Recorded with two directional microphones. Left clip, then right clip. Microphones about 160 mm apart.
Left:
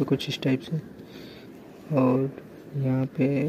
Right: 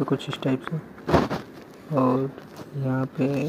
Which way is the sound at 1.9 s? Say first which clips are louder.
Right 1 dB; 5° left (ahead or behind).